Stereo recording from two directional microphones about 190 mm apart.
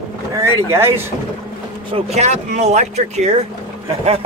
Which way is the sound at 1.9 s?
35° right (ahead or behind).